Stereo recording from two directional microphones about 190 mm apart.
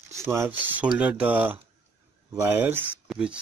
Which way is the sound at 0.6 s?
5° right (ahead or behind).